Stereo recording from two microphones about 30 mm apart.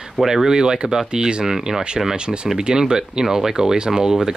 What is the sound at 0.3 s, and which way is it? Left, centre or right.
Speech, centre.